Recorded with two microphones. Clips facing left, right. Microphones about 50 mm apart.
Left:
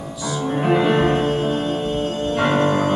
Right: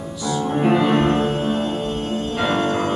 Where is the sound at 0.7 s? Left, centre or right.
Centre.